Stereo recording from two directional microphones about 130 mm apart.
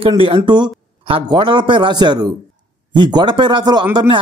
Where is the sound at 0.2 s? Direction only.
40° right (ahead or behind).